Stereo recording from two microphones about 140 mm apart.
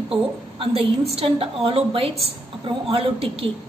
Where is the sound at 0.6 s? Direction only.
40° right (ahead or behind).